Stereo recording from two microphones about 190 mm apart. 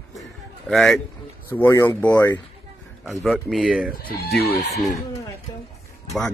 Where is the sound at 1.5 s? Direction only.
10° left (ahead or behind).